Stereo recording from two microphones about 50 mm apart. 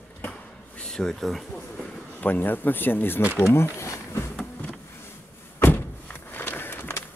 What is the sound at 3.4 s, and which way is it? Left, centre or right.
Speech, left.